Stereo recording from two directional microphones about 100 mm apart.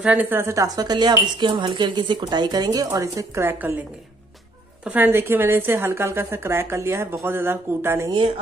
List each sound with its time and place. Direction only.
0.0 s a woman's voice: 10° right (ahead or behind)
0.3 s a woman's voice: 25° right (ahead or behind)
0.7 s speech: 45° right (ahead or behind); by 3.7 s 20° right (ahead or behind)
4.8 s a woman's voice: 20° right (ahead or behind)